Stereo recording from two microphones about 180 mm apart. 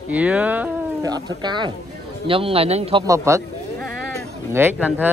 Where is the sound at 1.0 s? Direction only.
25° right (ahead or behind).